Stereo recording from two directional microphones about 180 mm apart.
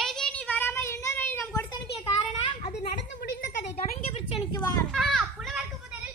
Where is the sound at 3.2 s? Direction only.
60° left (ahead or behind).